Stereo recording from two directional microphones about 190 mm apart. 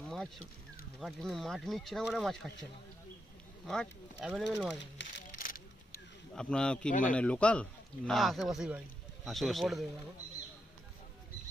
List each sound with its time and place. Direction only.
0.0 s a sound: 5° left (ahead or behind)
0.9 s speech: centre (ahead or behind)
3.6 s speech: 5° left (ahead or behind)
4.9 s a sound: 65° left (ahead or behind)
6.3 s speech: 5° left (ahead or behind)
6.9 s a man's voice: 45° left (ahead or behind)
7.2 s speech: 5° left (ahead or behind)